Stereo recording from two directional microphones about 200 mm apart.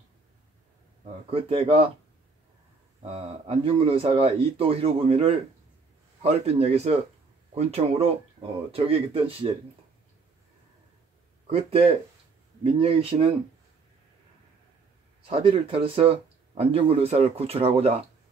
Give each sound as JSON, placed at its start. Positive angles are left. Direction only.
{"t": 1.3, "sound": "speech", "side_deg": -30}
{"t": 3.0, "sound": "speech", "side_deg": -25}
{"t": 11.5, "sound": "speech", "side_deg": -30}
{"t": 15.2, "sound": "speech", "side_deg": -25}